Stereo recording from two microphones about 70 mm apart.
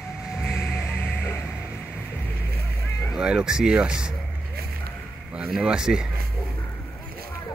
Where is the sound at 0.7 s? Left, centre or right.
Centre.